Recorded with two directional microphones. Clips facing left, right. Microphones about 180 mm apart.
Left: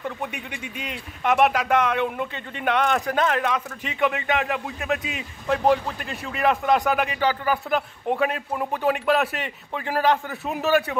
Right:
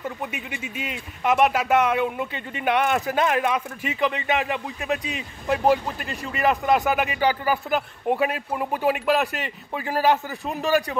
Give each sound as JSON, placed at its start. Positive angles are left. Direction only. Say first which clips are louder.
{"t": 0.2, "sound": "speech", "louder": "even", "side_deg": -5}